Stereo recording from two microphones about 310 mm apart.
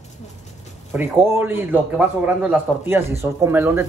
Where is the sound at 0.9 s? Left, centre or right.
Centre.